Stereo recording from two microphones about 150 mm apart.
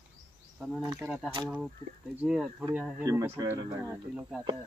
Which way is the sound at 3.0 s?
20° right (ahead or behind).